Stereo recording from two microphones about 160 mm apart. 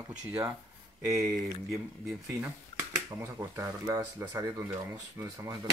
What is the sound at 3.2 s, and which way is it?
Speech, 20° right (ahead or behind).